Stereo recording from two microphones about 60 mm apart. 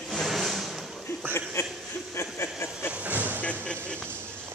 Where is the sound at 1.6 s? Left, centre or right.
Left.